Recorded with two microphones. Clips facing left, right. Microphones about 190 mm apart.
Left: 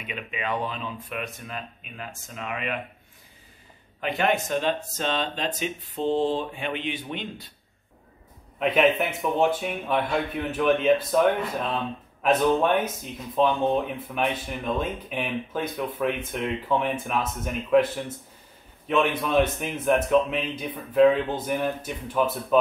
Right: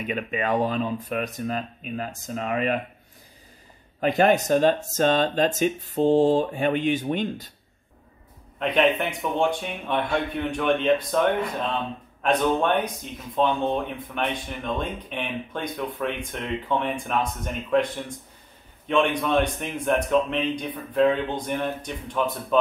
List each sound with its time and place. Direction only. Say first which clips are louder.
0.0 s speech: right 6 dB; 45° right (ahead or behind)
4.0 s speech: right 5 dB; 40° right (ahead or behind)
8.5 s speech: even; 5° left (ahead or behind)